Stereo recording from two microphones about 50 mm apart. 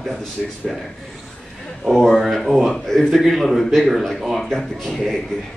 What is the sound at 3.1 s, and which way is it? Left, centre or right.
A man's voice, centre.